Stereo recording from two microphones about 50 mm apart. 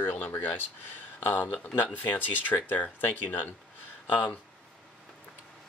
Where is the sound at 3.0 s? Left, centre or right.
Left.